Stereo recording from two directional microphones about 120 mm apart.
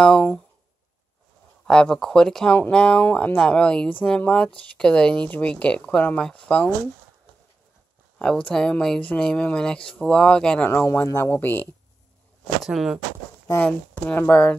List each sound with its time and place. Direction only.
1.7 s speech: 5° left (ahead or behind)
8.2 s speech: 5° left (ahead or behind)
10.7 s speech: 20° left (ahead or behind)
12.6 s speech: centre (ahead or behind)
13.6 s speech: 10° left (ahead or behind)